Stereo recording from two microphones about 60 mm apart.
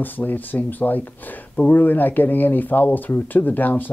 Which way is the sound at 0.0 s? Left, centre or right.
Left.